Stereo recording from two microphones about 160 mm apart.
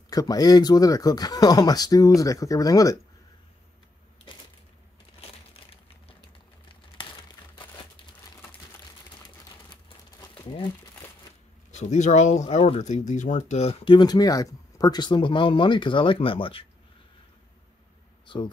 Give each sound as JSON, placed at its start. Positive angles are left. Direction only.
{"t": 0.1, "sound": "speech", "side_deg": 25}
{"t": 9.2, "sound": "crumpling", "side_deg": 25}
{"t": 11.7, "sound": "speech", "side_deg": 45}
{"t": 13.9, "sound": "speech", "side_deg": 25}
{"t": 18.2, "sound": "a sound", "side_deg": 30}